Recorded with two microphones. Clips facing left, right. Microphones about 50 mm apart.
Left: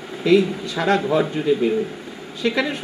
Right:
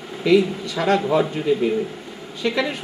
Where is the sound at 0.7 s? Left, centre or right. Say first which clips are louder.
Even; centre.